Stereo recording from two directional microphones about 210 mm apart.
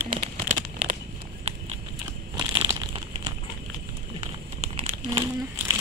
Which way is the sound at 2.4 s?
20° right (ahead or behind).